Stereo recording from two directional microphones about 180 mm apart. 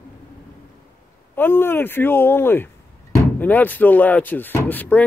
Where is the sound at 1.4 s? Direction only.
10° left (ahead or behind).